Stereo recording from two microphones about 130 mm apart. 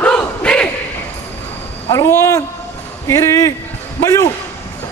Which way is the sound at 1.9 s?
20° left (ahead or behind).